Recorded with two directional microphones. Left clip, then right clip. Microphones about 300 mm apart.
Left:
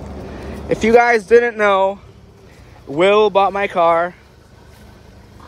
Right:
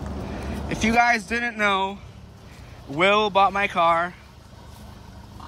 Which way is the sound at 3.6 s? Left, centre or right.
Centre.